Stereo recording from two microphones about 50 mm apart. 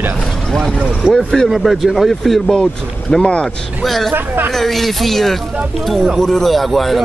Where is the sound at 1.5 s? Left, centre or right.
Centre.